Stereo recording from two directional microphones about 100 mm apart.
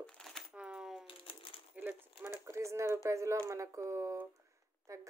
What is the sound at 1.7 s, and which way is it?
Speech, 20° right (ahead or behind).